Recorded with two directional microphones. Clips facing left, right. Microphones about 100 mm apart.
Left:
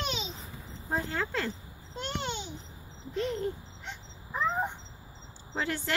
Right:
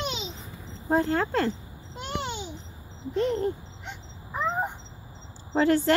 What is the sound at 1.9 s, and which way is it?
Babbling, 10° right (ahead or behind).